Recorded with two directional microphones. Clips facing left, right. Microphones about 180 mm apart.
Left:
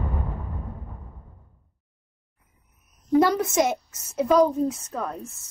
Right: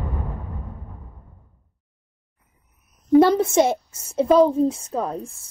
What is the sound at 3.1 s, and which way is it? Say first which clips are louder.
A woman's voice: right 5 dB; 30° right (ahead or behind).